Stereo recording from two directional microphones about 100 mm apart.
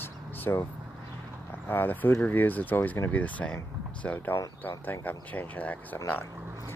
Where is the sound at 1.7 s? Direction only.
20° left (ahead or behind).